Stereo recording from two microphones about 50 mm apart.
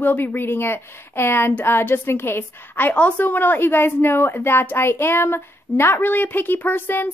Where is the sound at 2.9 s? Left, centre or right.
Left.